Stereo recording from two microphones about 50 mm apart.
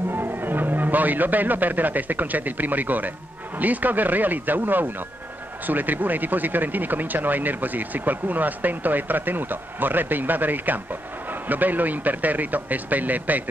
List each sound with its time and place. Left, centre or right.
0.1 s speech: right